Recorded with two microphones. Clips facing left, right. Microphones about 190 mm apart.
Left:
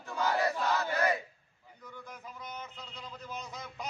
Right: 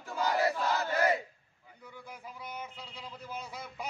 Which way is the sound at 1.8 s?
10° right (ahead or behind).